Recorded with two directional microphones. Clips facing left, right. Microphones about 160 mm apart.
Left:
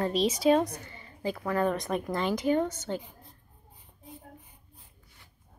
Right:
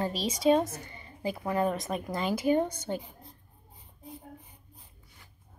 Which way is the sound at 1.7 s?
Centre (ahead or behind).